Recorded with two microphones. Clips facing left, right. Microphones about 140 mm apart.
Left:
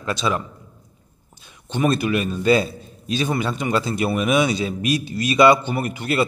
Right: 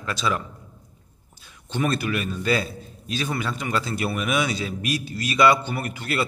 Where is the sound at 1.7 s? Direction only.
20° left (ahead or behind).